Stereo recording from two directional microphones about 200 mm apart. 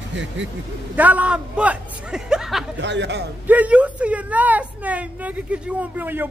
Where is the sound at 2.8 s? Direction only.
60° right (ahead or behind).